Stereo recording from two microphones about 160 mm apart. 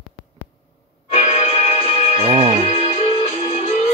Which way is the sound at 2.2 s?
40° right (ahead or behind).